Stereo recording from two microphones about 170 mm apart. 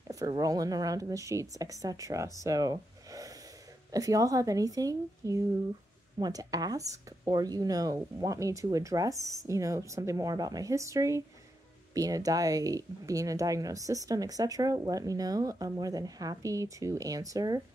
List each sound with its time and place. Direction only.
0.1 s speech: 20° right (ahead or behind)